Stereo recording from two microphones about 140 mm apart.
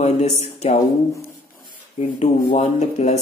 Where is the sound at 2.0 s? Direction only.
50° left (ahead or behind).